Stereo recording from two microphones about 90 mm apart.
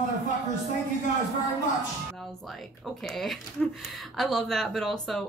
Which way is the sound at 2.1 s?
Centre (ahead or behind).